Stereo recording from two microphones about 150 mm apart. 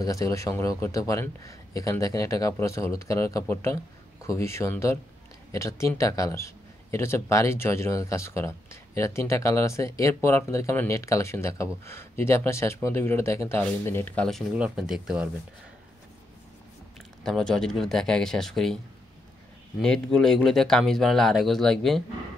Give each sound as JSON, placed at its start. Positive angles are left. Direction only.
{"t": 0.0, "sound": "a man's voice", "side_deg": 20}
{"t": 14.5, "sound": "speech", "side_deg": -5}
{"t": 17.2, "sound": "speech", "side_deg": 5}
{"t": 19.8, "sound": "speech", "side_deg": 5}